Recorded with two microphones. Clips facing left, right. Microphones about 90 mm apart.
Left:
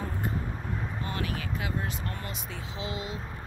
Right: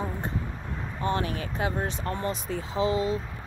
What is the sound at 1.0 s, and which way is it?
Speech, 30° right (ahead or behind).